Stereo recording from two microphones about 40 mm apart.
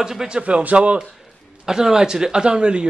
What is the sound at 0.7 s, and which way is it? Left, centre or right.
Speech, right.